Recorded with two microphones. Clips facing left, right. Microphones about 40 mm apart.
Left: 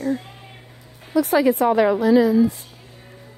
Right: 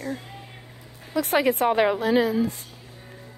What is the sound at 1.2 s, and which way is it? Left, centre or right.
Speech, right.